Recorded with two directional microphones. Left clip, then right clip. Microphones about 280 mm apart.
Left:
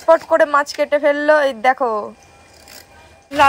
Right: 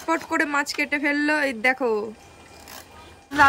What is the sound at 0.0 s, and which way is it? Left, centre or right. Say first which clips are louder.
Speech: left 11 dB; centre.